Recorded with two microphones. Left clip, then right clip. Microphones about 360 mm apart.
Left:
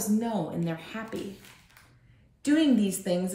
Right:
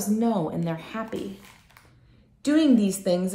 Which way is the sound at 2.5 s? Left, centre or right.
Centre.